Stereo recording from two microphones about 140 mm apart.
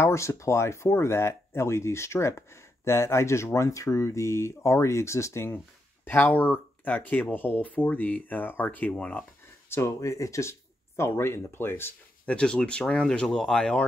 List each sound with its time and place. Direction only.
0.0 s speech: 20° left (ahead or behind)